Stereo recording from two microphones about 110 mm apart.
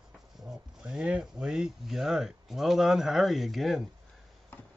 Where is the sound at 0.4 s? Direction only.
5° right (ahead or behind).